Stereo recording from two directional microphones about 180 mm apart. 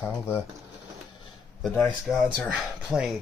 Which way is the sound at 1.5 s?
5° left (ahead or behind).